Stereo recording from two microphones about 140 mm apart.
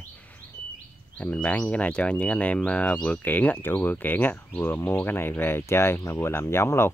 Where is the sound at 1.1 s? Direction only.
10° left (ahead or behind).